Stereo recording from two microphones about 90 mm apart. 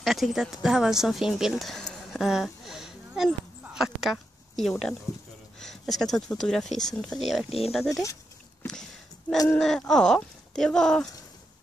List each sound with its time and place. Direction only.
0.0 s speech: centre (ahead or behind)
3.6 s a sound: 5° right (ahead or behind)
5.6 s speech: 5° left (ahead or behind)
7.4 s speech: 90° left
7.7 s speech: centre (ahead or behind)
9.6 s speech: 5° left (ahead or behind)